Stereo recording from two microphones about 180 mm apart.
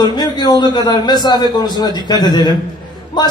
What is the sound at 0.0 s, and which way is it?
A man's voice, 25° left (ahead or behind).